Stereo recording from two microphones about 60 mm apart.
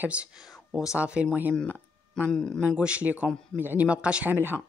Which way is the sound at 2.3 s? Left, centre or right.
Centre.